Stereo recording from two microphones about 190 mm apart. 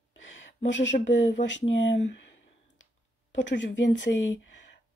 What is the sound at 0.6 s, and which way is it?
Speech, 70° left (ahead or behind).